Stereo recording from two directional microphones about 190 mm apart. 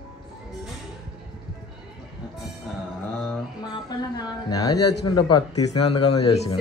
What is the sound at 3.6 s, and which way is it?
Speech, 20° left (ahead or behind).